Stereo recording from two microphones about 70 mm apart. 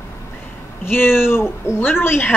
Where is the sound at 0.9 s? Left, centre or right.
Left.